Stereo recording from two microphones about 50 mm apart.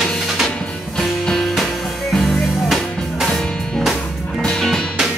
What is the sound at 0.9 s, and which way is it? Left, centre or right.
Music, centre.